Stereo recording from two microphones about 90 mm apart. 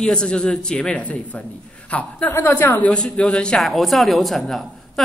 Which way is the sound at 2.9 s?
10° left (ahead or behind).